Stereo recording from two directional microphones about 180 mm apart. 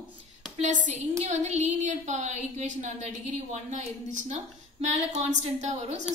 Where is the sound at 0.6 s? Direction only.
40° right (ahead or behind).